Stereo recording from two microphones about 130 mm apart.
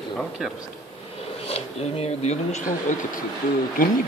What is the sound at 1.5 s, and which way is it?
Speech, 50° left (ahead or behind).